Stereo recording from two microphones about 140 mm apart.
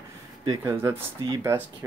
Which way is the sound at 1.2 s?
30° right (ahead or behind).